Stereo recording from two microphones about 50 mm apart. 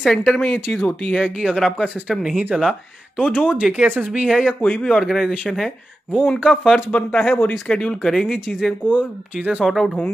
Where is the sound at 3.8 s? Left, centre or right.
Right.